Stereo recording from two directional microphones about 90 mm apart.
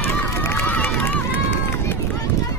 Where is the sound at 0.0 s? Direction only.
25° left (ahead or behind).